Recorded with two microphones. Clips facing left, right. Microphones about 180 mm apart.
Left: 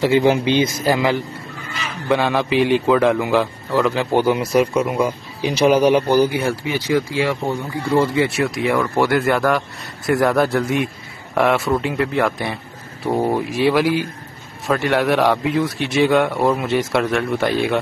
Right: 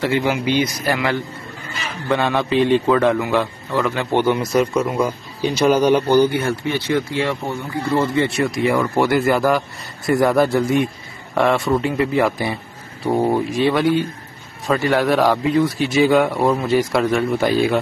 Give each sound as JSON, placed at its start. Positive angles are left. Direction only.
{"t": 0.0, "sound": "speech", "side_deg": 25}
{"t": 2.0, "sound": "a man's voice", "side_deg": 10}